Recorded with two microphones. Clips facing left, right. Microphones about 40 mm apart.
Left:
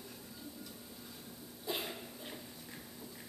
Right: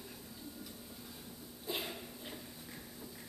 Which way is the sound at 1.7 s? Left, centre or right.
Left.